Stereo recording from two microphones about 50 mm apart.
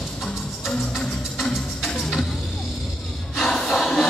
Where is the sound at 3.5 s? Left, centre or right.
Centre.